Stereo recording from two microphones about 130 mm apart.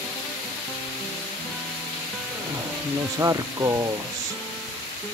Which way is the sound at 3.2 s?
25° right (ahead or behind).